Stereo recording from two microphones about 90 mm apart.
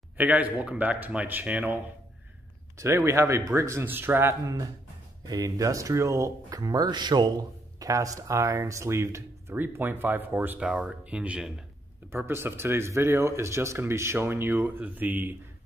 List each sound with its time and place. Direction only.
0.2 s speech: 15° right (ahead or behind)
2.8 s speech: 30° right (ahead or behind)
3.8 s speech: 25° right (ahead or behind)
5.3 s speech: 40° right (ahead or behind); by 10.7 s 20° right (ahead or behind)
10.7 s speech: 10° right (ahead or behind)
12.1 s speech: 25° right (ahead or behind)